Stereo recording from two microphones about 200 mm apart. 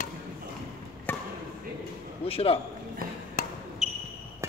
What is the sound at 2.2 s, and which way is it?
Speech, 30° left (ahead or behind).